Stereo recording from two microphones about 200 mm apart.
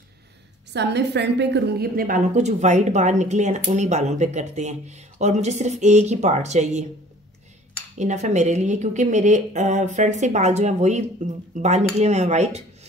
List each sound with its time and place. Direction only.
0.7 s a woman's voice: 60° right (ahead or behind); by 6.9 s 35° right (ahead or behind)
8.0 s a woman's voice: 35° right (ahead or behind)